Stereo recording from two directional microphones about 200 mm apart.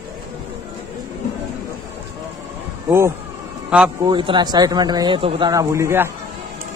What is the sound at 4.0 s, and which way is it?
Speech, 25° right (ahead or behind).